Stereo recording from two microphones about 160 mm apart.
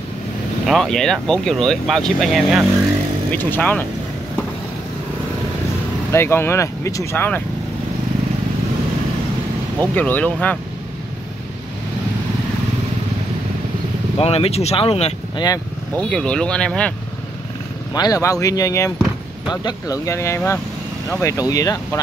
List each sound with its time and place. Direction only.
0.7 s speech: 5° left (ahead or behind)
3.3 s speech: 10° left (ahead or behind)
6.1 s speech: 15° left (ahead or behind)
9.8 s speech: 10° left (ahead or behind)
14.1 s speech: 40° left (ahead or behind)
15.3 s speech: 25° left (ahead or behind)
16.0 s speech: 5° left (ahead or behind)
17.9 s speech: 25° left (ahead or behind)